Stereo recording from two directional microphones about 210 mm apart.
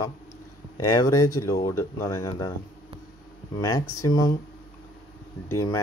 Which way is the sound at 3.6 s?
15° left (ahead or behind).